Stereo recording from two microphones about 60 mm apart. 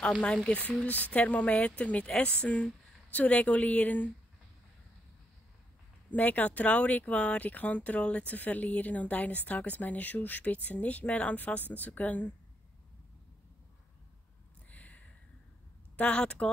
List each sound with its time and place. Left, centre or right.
0.2 s speech: centre
6.0 s speech: left
14.7 s a sound: left
16.0 s speech: centre